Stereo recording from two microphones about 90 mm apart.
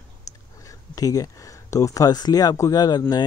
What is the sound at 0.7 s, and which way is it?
Speech, 40° left (ahead or behind).